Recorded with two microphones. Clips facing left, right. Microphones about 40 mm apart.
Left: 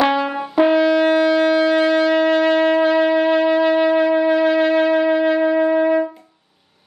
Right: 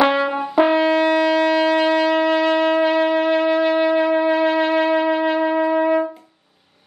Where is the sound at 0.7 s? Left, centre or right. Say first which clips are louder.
Left 2 dB; right.